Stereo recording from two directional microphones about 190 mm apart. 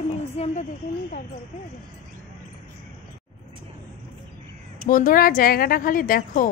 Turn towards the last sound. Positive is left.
turn(degrees=50)  # may be behind; listen again after turning